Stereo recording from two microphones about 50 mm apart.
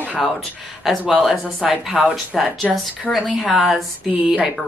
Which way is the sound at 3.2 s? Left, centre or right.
Centre.